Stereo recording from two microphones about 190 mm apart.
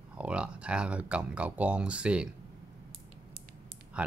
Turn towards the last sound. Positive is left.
turn(degrees=-5)  # may be behind; listen again after turning